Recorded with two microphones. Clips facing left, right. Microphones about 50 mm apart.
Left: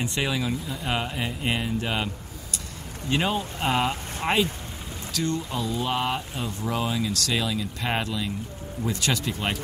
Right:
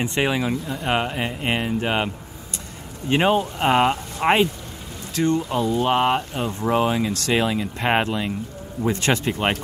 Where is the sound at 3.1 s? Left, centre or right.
Right.